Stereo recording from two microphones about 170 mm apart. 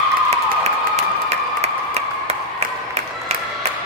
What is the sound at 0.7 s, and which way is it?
Clapping, 40° right (ahead or behind).